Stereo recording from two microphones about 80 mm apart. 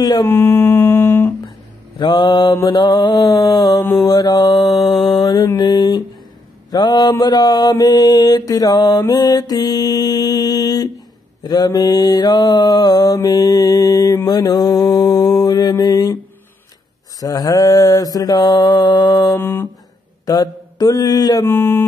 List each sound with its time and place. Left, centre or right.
0.0 s mantra: left
0.3 s mantra: left
2.0 s mantra: left
5.6 s mantra: left
6.7 s mantra: left
14.2 s mantra: left
17.2 s mantra: left
19.4 s a sound: left
20.2 s mantra: left
21.5 s a sound: left